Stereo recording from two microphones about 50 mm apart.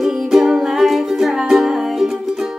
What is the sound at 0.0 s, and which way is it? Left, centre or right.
Music, centre.